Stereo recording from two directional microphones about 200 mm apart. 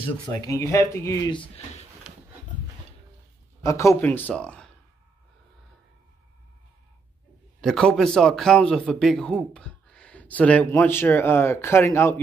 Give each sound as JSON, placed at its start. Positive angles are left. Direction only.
{"t": 0.4, "sound": "speech", "side_deg": 15}
{"t": 3.6, "sound": "speech", "side_deg": 15}
{"t": 7.6, "sound": "a man's voice", "side_deg": 0}